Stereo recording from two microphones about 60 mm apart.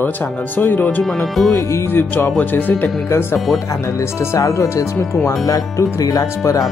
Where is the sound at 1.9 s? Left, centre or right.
Left.